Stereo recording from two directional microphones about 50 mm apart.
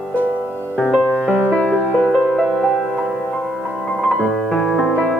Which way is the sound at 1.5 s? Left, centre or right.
Centre.